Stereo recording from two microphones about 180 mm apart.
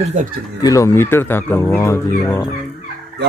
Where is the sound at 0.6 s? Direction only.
15° left (ahead or behind).